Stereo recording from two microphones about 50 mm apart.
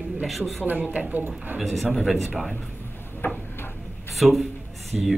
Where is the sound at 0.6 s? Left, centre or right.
Right.